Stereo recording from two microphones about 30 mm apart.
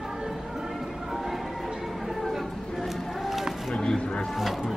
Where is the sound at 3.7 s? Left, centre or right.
Left.